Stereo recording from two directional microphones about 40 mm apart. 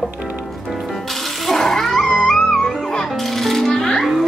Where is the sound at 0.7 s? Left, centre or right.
Centre.